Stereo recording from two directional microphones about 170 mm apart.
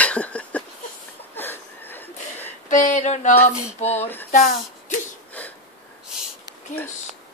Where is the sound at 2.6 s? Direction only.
45° left (ahead or behind).